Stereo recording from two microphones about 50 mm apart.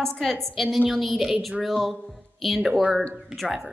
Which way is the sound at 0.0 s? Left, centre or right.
Centre.